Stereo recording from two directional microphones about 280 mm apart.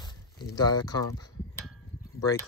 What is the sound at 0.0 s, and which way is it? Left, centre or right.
Speech, centre.